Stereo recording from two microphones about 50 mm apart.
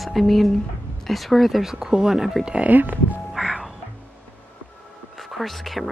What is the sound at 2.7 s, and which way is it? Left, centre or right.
Speech, right.